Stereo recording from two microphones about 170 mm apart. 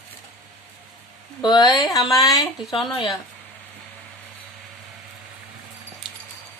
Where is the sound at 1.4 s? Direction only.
25° left (ahead or behind).